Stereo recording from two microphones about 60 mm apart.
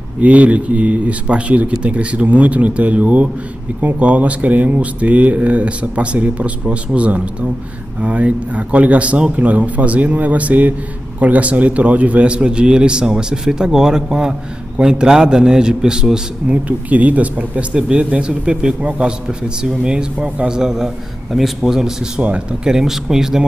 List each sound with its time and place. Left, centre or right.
0.2 s a man's voice: right
16.6 s a man's voice: right; by 22.2 s centre
22.2 s a man's voice: centre